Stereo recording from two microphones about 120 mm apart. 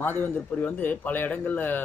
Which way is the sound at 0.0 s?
15° left (ahead or behind).